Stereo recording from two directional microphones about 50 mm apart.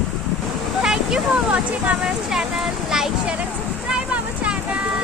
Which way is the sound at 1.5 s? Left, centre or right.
Right.